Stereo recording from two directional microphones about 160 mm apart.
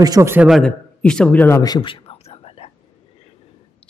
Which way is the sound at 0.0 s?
20° right (ahead or behind).